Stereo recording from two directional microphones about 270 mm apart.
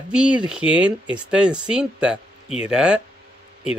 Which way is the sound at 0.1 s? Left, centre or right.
Centre.